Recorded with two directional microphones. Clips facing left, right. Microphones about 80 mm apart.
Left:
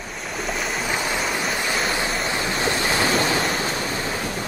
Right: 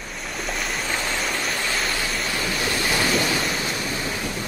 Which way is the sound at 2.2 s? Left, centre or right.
Left.